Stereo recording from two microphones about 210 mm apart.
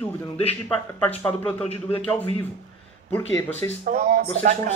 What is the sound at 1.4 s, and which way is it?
Speech, 30° left (ahead or behind).